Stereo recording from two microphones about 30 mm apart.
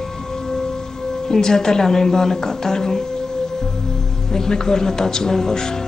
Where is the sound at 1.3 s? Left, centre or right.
Centre.